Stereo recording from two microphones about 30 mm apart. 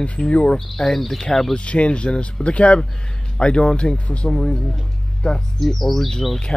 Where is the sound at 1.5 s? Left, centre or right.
Left; by 5.4 s centre.